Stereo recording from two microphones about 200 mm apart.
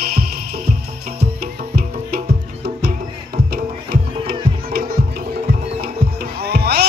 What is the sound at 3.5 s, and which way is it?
Music, 50° right (ahead or behind).